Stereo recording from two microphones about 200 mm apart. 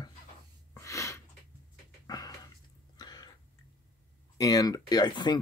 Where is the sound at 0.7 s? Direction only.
15° left (ahead or behind).